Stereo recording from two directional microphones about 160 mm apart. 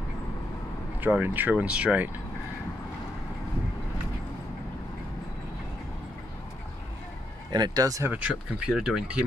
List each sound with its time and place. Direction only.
1.0 s speech: 10° right (ahead or behind)
7.5 s speech: 25° right (ahead or behind)
8.1 s speech: 10° right (ahead or behind)